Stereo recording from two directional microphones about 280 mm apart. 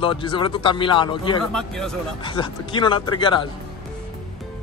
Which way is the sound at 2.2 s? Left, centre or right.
Centre.